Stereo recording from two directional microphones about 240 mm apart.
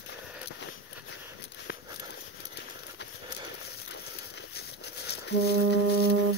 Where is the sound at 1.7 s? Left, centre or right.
Left.